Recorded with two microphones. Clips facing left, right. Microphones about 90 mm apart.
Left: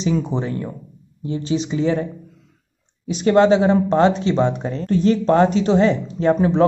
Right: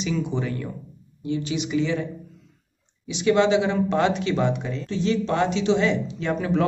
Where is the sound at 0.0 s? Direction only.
35° left (ahead or behind).